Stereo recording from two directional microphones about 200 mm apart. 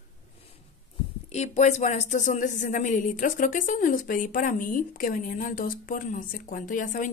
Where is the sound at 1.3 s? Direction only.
35° left (ahead or behind).